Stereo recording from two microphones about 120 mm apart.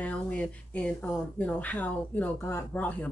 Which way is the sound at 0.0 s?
10° left (ahead or behind).